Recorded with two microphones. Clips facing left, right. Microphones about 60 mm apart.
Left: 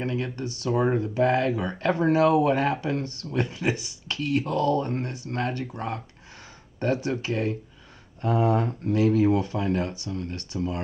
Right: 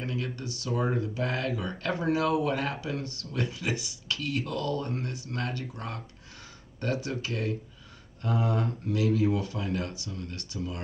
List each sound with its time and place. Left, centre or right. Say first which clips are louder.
0.0 s speech: left 5 dB; left